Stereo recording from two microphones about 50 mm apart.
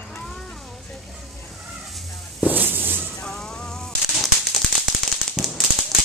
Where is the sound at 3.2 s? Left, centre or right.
Centre.